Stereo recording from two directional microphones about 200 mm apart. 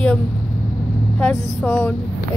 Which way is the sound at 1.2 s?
5° left (ahead or behind).